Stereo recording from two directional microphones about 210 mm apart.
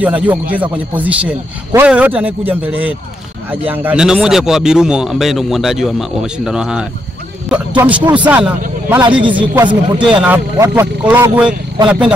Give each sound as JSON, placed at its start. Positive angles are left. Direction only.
{"t": 0.0, "sound": "a man's voice", "side_deg": -5}
{"t": 9.0, "sound": "speech", "side_deg": -25}
{"t": 10.2, "sound": "a man's voice", "side_deg": -5}